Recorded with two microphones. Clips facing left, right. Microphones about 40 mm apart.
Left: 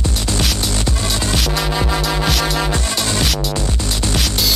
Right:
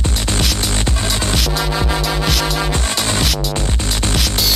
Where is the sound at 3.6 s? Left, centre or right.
Right.